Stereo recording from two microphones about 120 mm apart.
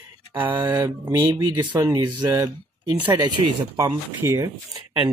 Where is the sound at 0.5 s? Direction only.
35° right (ahead or behind).